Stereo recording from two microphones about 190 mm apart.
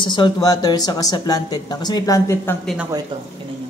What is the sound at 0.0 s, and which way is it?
Speech, 25° left (ahead or behind).